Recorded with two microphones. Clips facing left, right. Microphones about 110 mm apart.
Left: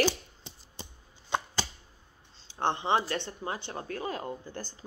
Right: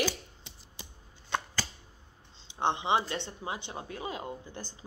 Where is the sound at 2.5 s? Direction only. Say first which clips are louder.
Even; 20° right (ahead or behind).